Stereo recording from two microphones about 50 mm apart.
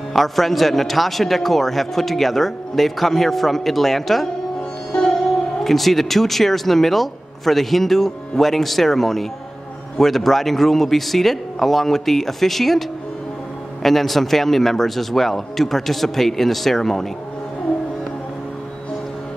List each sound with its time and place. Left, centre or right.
0.1 s a man's voice: centre
4.9 s sitar: left
5.6 s a man's voice: centre
13.8 s a man's voice: centre